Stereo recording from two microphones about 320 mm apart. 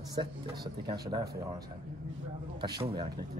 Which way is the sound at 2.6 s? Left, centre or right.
Centre.